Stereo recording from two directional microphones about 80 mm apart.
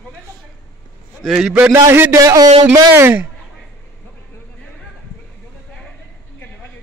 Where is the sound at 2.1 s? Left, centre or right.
Right.